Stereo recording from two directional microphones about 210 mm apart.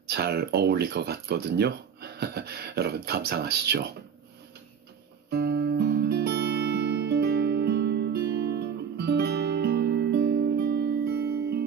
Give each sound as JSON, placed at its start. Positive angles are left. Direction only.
{"t": 0.1, "sound": "speech", "side_deg": -50}
{"t": 5.3, "sound": "guitar", "side_deg": -50}